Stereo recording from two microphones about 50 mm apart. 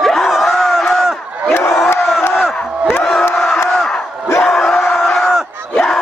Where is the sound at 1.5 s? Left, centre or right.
Left.